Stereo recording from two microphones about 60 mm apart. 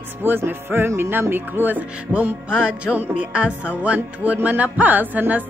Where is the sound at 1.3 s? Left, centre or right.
Right.